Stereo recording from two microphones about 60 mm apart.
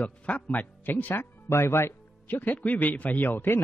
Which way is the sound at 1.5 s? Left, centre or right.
Left.